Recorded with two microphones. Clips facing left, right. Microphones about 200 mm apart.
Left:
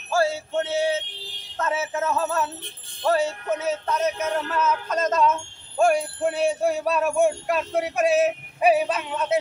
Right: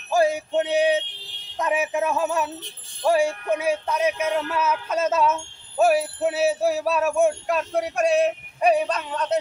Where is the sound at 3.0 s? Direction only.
10° right (ahead or behind).